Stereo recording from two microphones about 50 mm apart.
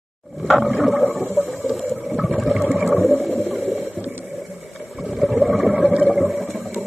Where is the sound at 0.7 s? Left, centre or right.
Centre.